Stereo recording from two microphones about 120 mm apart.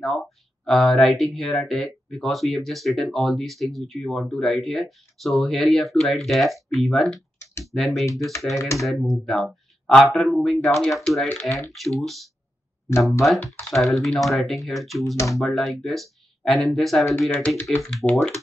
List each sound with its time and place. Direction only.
0.0 s speech: centre (ahead or behind)
8.1 s speech: 25° left (ahead or behind)
8.7 s speech: centre (ahead or behind)
13.6 s speech: 5° left (ahead or behind)